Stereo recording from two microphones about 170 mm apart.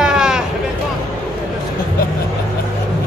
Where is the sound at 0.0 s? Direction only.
5° right (ahead or behind).